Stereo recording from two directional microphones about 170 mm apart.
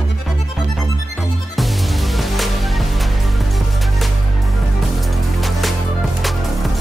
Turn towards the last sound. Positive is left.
turn(degrees=0)  # may be behind; listen again after turning